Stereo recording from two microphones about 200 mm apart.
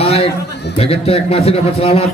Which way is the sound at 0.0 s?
30° left (ahead or behind).